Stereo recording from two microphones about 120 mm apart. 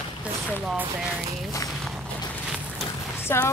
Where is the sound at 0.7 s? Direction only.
15° right (ahead or behind).